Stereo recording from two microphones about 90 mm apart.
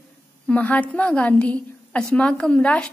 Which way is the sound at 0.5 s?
15° left (ahead or behind).